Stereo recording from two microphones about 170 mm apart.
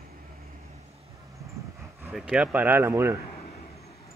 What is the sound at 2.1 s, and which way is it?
Speech, 5° right (ahead or behind).